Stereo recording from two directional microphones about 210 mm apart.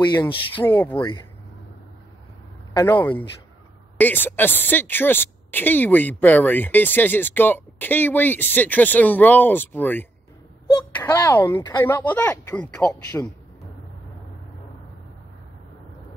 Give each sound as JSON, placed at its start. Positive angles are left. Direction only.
{"t": 0.7, "sound": "speech", "side_deg": 10}
{"t": 2.7, "sound": "speech", "side_deg": 15}